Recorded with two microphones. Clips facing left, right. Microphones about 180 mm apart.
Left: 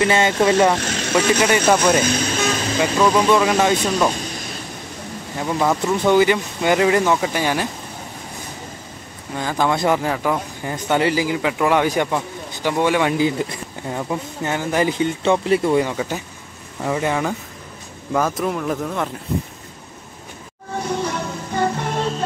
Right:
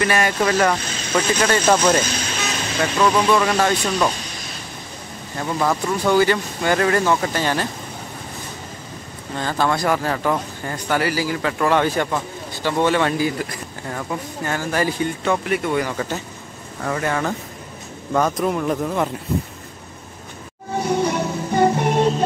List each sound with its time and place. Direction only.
0.0 s speech: 25° left (ahead or behind)
0.7 s vehicle: 75° left (ahead or behind)
1.4 s speech: 15° left (ahead or behind)
5.4 s speech: 10° left (ahead or behind)
9.3 s speech: 10° left (ahead or behind); by 15.9 s 30° left (ahead or behind)
15.9 s speech: 15° left (ahead or behind); by 19.0 s centre (ahead or behind)
20.9 s music: 15° right (ahead or behind)